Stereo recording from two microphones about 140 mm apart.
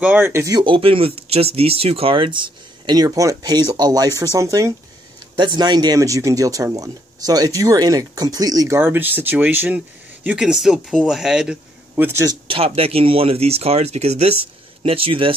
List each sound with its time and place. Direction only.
0.0 s speech: 10° right (ahead or behind)
0.6 s speech: 40° right (ahead or behind); by 12.4 s 20° right (ahead or behind)
12.4 s speech: 40° right (ahead or behind)